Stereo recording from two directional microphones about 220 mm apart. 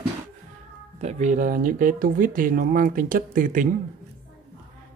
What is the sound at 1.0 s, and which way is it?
Speech, 30° right (ahead or behind).